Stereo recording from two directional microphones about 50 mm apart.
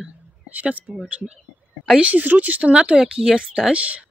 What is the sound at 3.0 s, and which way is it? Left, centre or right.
Speech, centre.